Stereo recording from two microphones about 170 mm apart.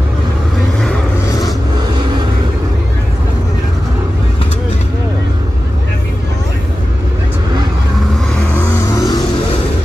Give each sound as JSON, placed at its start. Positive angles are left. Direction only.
{"t": 8.5, "sound": "vehicle", "side_deg": 20}